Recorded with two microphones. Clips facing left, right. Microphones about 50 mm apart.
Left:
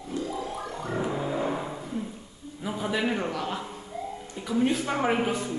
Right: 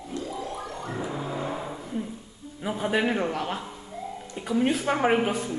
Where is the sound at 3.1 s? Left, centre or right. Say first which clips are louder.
Right 2 dB; centre.